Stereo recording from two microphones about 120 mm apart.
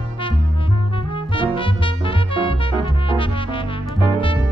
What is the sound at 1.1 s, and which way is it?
Music, 45° left (ahead or behind).